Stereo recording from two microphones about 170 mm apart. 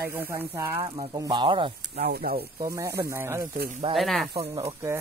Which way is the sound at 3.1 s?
15° right (ahead or behind).